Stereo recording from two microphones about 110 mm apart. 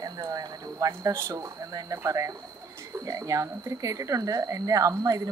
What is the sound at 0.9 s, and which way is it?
Speech, 25° right (ahead or behind).